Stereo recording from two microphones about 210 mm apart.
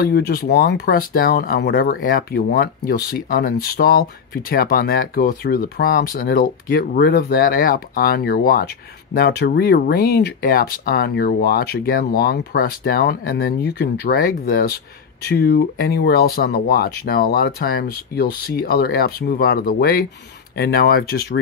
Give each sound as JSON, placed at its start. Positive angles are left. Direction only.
{"t": 0.0, "sound": "speech", "side_deg": 50}